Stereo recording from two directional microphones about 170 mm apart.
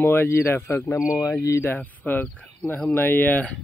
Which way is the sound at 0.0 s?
10° left (ahead or behind).